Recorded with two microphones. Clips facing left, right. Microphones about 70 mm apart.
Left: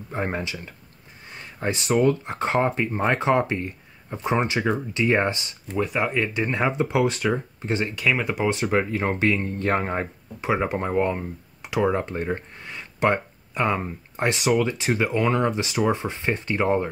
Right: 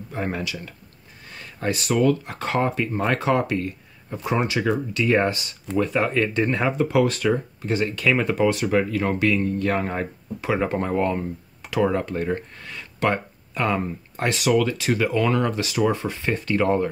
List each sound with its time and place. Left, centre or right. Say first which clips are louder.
0.1 s speech: even; left
5.8 s speech: right 2 dB; centre
8.5 s speech: right 2 dB; left